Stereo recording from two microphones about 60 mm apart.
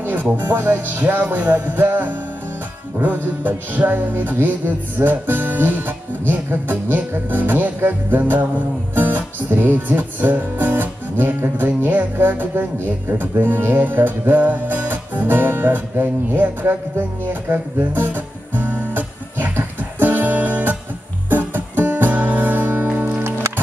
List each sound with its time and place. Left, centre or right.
0.0 s music: right
3.4 s music: right